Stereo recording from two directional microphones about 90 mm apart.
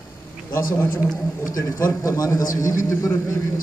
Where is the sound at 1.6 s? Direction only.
40° left (ahead or behind).